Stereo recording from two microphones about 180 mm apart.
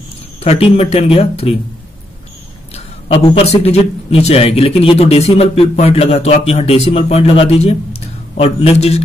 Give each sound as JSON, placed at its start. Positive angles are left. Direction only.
{"t": 0.4, "sound": "a man's voice", "side_deg": 35}
{"t": 2.7, "sound": "a man's voice", "side_deg": 30}